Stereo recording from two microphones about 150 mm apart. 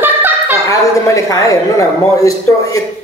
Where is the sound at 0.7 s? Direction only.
20° left (ahead or behind).